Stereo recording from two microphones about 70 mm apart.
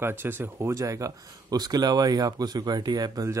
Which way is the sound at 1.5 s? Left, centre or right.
Right.